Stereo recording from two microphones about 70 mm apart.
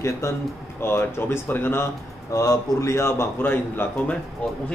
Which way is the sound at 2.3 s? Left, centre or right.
Left.